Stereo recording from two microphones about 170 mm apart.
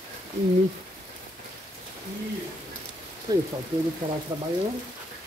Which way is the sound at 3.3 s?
25° right (ahead or behind).